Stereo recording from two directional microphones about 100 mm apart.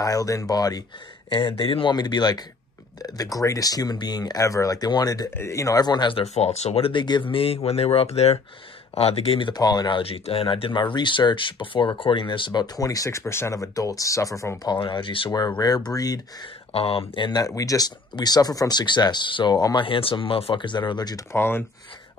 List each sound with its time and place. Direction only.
0.0 s speech: 35° left (ahead or behind)
1.6 s speech: 60° left (ahead or behind)
2.0 s speech: 45° left (ahead or behind)
5.3 s speech: 30° left (ahead or behind); by 6.1 s 45° left (ahead or behind)
6.1 s speech: 90° left
6.9 s speech: 50° left (ahead or behind); by 9.5 s 75° left (ahead or behind)
9.5 s speech: 45° left (ahead or behind)
10.0 s speech: 75° left (ahead or behind); by 14.7 s 30° left (ahead or behind)
14.7 s speech: 50° left (ahead or behind)
16.7 s speech: 70° left (ahead or behind); by 21.3 s 40° left (ahead or behind)
21.3 s speech: 25° left (ahead or behind)